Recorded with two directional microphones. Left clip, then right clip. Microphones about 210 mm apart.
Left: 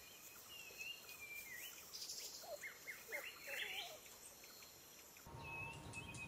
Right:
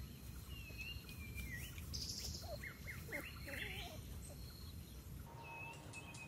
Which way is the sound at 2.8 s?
Centre (ahead or behind).